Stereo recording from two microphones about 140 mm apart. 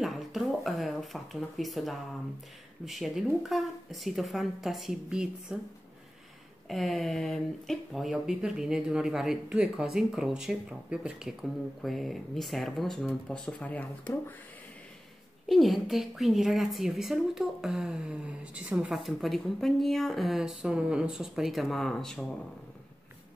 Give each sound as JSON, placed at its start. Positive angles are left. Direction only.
{"t": 0.0, "sound": "a sound", "side_deg": 0}
{"t": 2.8, "sound": "a woman's voice", "side_deg": 0}
{"t": 6.7, "sound": "a woman's voice", "side_deg": 0}
{"t": 15.4, "sound": "a woman's voice", "side_deg": 0}